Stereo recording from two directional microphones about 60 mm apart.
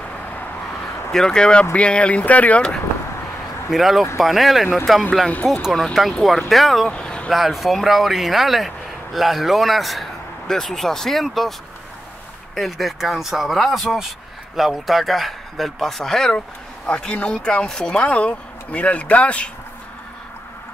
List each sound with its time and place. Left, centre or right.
1.1 s speech: centre
3.7 s speech: centre
6.9 s a sound: centre
7.2 s speech: centre
12.5 s speech: centre
16.8 s speech: centre